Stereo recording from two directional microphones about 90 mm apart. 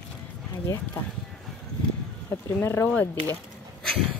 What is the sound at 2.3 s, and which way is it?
Speech, 30° left (ahead or behind).